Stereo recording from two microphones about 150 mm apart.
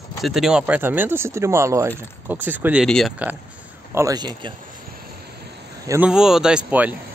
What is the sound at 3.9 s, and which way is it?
Speech, 25° right (ahead or behind).